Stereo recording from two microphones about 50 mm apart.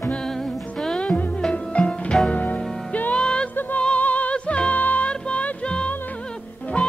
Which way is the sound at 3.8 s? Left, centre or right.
Left.